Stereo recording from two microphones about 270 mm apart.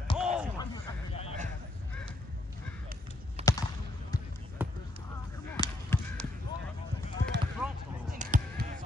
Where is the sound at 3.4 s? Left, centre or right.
Right.